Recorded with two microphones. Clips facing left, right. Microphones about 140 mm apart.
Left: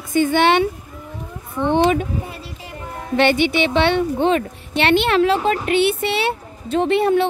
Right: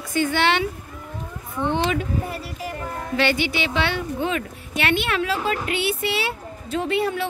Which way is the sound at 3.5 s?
25° left (ahead or behind).